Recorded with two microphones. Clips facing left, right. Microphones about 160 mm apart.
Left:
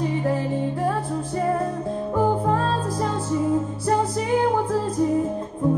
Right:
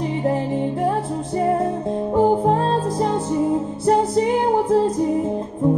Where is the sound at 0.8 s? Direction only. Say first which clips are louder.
Right 3 dB; 20° right (ahead or behind).